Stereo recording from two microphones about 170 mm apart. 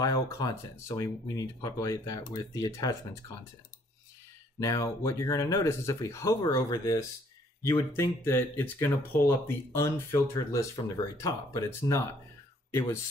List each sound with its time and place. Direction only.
0.0 s speech: 20° left (ahead or behind)
4.6 s speech: 20° left (ahead or behind)